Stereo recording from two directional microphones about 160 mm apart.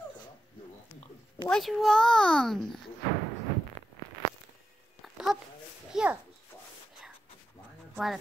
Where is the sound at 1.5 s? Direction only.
Centre (ahead or behind).